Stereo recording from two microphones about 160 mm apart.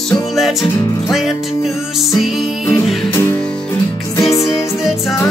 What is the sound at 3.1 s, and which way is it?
Music, 15° left (ahead or behind).